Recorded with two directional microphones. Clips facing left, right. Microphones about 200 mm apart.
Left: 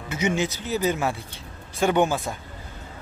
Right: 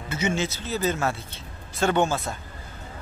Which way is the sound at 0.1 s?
15° left (ahead or behind).